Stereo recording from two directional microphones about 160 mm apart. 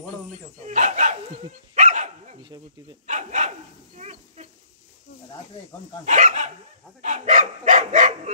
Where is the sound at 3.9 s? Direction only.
45° right (ahead or behind).